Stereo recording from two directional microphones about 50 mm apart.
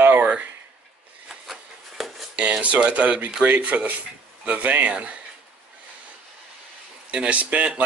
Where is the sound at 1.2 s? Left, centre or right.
Centre.